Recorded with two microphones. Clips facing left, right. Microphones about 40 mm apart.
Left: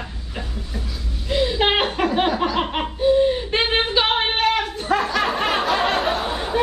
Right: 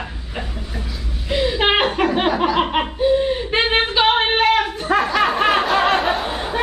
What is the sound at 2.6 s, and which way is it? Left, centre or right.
Laughter, right.